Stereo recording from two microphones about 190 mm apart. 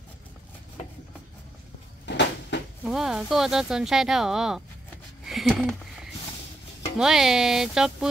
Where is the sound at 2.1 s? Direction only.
65° left (ahead or behind).